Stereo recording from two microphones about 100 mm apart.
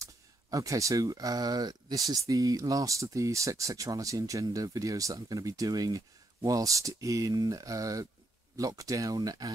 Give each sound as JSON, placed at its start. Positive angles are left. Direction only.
{"t": 0.0, "sound": "speech", "side_deg": -35}